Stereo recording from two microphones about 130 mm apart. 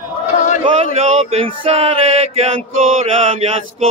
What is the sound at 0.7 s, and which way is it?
Male singing, 50° right (ahead or behind).